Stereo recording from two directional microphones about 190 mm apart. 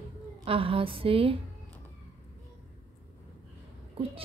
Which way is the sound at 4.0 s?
30° right (ahead or behind).